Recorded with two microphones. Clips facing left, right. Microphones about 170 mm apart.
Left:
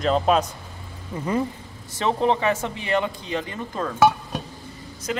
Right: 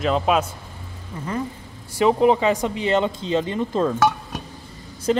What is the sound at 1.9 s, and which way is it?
Speech, 10° right (ahead or behind).